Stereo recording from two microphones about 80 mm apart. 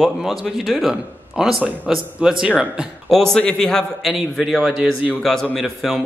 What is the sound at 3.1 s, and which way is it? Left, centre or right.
A man's voice, centre.